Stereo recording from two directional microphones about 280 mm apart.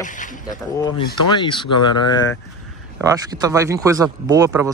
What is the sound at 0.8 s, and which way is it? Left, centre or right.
Speech, centre.